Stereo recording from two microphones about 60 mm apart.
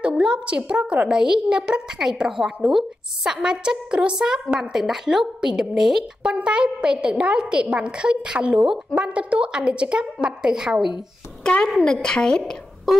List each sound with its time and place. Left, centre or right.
0.0 s a woman's voice: centre
6.2 s a woman's voice: centre
11.6 s a woman's voice: centre
12.9 s a sound: centre